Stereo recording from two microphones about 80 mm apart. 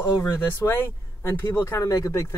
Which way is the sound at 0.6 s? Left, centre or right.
Left.